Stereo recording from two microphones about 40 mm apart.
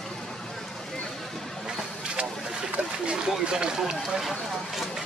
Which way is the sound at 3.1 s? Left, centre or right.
Right.